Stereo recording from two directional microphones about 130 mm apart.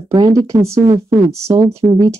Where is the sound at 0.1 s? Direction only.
25° right (ahead or behind).